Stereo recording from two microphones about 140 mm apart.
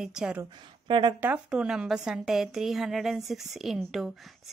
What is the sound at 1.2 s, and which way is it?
A woman's voice, 10° right (ahead or behind).